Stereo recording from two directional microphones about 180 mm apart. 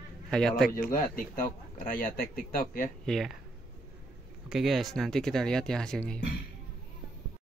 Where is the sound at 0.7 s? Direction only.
45° left (ahead or behind).